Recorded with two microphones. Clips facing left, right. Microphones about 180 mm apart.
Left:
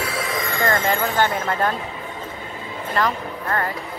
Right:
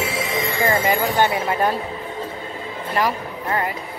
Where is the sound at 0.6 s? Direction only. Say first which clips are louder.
Right 1 dB; 10° right (ahead or behind).